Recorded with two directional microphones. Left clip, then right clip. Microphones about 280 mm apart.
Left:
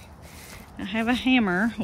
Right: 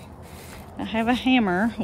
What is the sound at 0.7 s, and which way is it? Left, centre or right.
Speech, centre.